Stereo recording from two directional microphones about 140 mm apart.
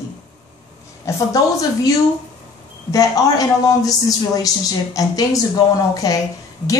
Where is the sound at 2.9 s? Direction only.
25° left (ahead or behind).